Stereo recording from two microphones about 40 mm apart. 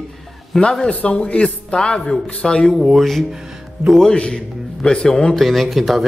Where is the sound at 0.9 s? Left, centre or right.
Left.